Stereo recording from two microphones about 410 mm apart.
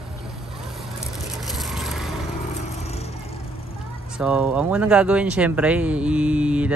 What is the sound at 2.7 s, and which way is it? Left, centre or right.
Vehicle, centre.